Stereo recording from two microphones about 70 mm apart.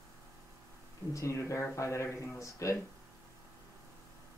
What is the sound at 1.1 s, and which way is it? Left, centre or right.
Speech, left.